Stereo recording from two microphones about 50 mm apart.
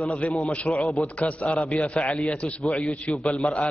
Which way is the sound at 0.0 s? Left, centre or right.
Left.